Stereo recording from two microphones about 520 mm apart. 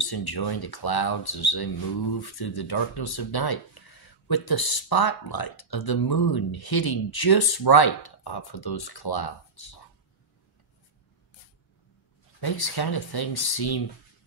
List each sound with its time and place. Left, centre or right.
0.0 s speech: left
12.4 s speech: left